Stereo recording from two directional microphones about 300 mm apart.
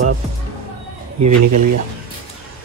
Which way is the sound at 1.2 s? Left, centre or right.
Right.